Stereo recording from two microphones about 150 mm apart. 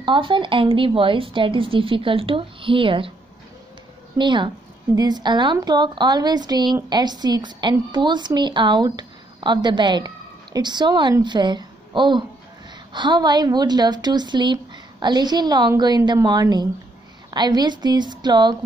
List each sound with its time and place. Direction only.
0.0 s a woman's voice: 35° right (ahead or behind)
4.2 s a woman's voice: 30° right (ahead or behind)